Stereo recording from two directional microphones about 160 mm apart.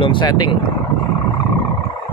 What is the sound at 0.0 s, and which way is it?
Speech, 30° left (ahead or behind).